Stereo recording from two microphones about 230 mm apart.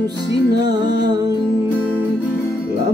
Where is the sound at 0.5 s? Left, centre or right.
Centre.